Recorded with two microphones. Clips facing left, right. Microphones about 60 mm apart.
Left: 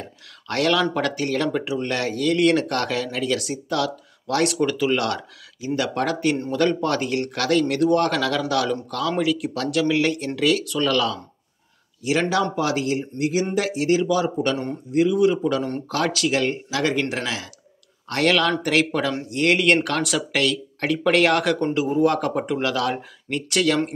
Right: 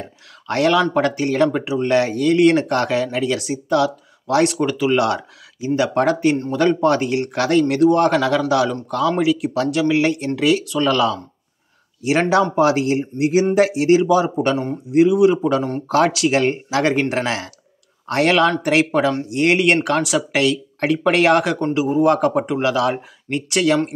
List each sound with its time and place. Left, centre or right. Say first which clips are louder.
0.5 s speech: right 4 dB; centre
12.0 s speech: right 5 dB; right
18.0 s speech: right 4 dB; right